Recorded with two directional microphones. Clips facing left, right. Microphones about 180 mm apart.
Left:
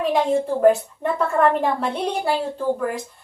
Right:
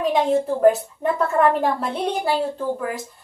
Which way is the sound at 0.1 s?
Centre (ahead or behind).